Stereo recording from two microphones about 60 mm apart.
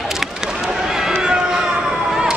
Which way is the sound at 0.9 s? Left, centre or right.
Centre.